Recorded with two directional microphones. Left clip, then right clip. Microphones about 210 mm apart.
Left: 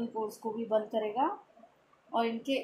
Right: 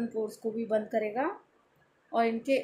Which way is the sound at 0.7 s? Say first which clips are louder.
Right 1 dB; 40° right (ahead or behind).